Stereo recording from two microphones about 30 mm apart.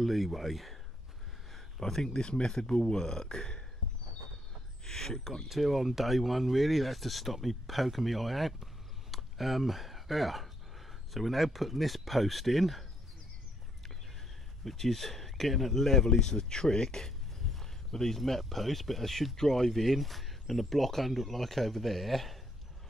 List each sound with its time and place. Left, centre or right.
0.0 s speech: centre
1.8 s speech: centre
2.2 s speech: left
4.8 s speech: centre
5.5 s speech: centre
14.6 s speech: centre